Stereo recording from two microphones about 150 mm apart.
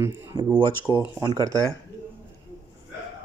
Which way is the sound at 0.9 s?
25° left (ahead or behind).